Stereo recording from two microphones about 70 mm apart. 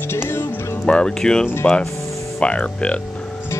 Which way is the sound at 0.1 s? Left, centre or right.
Left.